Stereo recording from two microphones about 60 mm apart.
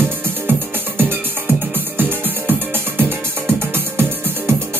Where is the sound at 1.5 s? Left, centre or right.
Right.